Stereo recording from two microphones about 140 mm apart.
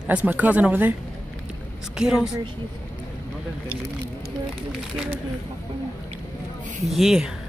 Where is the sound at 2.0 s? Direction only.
5° right (ahead or behind).